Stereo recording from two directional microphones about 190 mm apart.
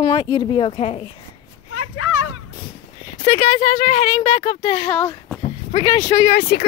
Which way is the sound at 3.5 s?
25° left (ahead or behind).